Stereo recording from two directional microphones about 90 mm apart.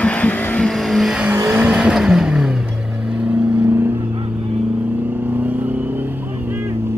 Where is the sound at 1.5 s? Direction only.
15° right (ahead or behind).